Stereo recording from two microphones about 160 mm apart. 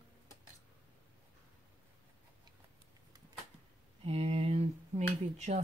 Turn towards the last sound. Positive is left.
turn(degrees=-45)  # may be behind; listen again after turning